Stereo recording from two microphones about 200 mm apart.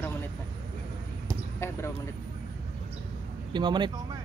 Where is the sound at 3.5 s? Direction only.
20° right (ahead or behind).